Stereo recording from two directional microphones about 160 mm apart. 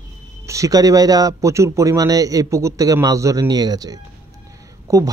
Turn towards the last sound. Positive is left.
turn(degrees=-20)  # may be behind; listen again after turning